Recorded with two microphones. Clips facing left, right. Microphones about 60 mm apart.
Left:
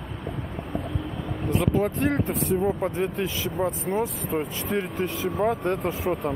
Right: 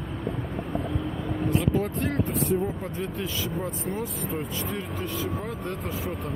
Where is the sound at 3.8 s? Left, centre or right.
Left.